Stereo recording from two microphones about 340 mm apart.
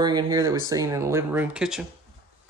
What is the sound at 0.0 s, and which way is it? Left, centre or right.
Speech, centre.